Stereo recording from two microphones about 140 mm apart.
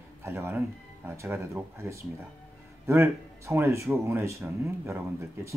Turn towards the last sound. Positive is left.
turn(degrees=-20)  # may be behind; listen again after turning